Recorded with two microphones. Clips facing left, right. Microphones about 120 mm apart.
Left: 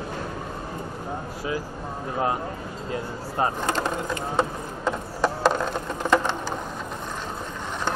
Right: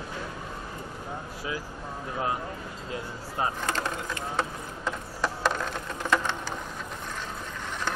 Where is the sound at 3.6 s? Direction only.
20° left (ahead or behind).